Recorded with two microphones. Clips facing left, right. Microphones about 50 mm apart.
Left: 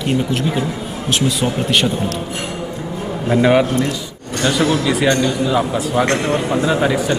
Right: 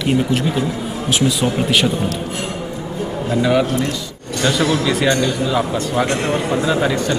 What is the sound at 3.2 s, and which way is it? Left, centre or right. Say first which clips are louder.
Speech: left 3 dB; left.